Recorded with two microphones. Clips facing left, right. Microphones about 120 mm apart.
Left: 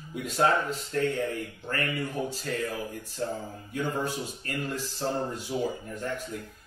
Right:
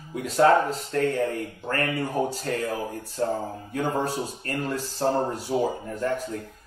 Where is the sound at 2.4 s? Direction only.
40° right (ahead or behind).